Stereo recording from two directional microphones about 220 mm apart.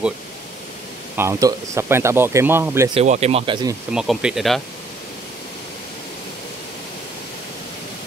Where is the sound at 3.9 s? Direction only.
5° right (ahead or behind).